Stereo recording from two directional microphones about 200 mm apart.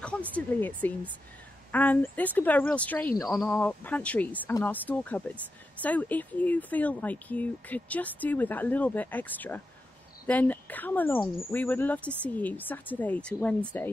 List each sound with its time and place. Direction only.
0.0 s speech: 5° left (ahead or behind)